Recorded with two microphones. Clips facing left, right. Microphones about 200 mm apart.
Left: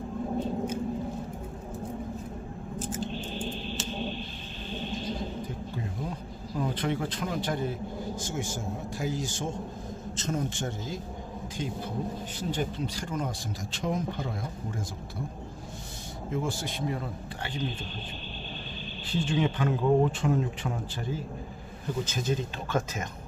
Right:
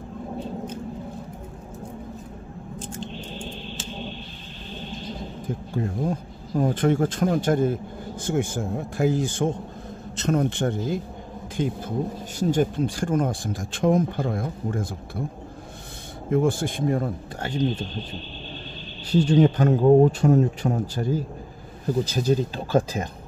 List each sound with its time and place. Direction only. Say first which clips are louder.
2.8 s scissors: left 2 dB; 5° left (ahead or behind)
5.8 s speech: right 12 dB; 45° right (ahead or behind)
12.4 s speech: right 11 dB; 45° right (ahead or behind)
16.3 s speech: right 10 dB; 55° right (ahead or behind)
19.1 s a man's voice: right 9 dB; 40° right (ahead or behind)